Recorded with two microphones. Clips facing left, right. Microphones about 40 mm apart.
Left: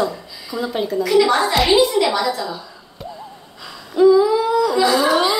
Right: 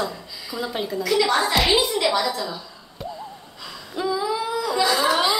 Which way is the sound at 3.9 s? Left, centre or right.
Centre.